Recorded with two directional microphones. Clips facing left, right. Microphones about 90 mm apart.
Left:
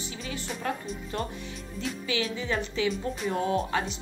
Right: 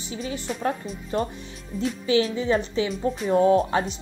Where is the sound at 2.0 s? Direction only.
30° right (ahead or behind).